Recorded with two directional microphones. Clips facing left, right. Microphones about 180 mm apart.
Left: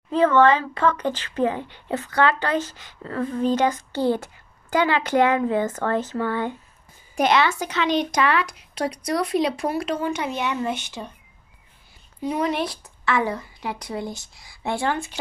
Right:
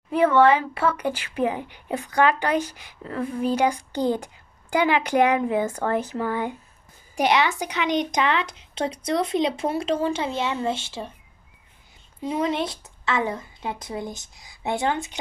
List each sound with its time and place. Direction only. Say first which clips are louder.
0.1 s a woman's voice: even; 10° right (ahead or behind); by 11.1 s 25° right (ahead or behind)
12.2 s a woman's voice: left 1 dB; 25° right (ahead or behind)